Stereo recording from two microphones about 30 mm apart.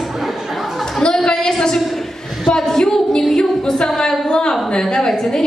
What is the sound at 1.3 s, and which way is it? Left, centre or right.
A woman's voice, left.